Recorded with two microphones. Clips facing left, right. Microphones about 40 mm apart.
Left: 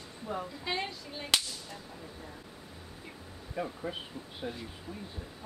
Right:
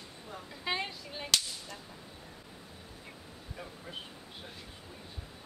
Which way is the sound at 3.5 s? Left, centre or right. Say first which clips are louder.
Left 11 dB; left.